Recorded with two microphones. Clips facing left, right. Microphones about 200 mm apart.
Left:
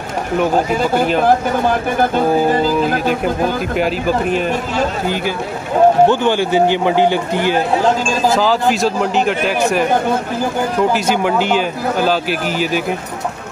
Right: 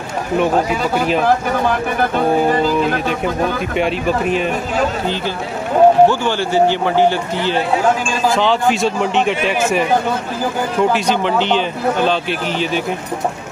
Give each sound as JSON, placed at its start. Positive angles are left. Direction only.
{"t": 3.7, "sound": "speech", "side_deg": 0}
{"t": 6.0, "sound": "a man's voice", "side_deg": 15}
{"t": 8.4, "sound": "speech", "side_deg": 5}